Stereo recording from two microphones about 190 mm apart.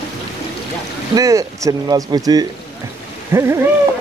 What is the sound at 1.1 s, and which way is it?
Speech, 15° right (ahead or behind).